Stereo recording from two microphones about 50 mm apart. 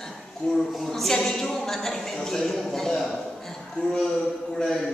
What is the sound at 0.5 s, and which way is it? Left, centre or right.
A woman's voice, centre.